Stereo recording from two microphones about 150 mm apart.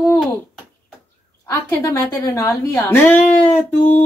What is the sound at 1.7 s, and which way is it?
Speech, 20° left (ahead or behind).